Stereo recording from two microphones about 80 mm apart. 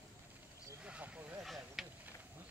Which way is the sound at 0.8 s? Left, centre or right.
Centre.